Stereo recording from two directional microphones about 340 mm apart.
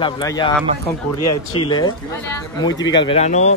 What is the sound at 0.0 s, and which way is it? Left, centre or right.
Speech, centre.